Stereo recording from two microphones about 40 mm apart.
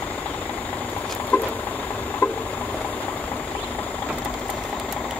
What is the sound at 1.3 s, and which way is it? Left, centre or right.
Vehicle, left.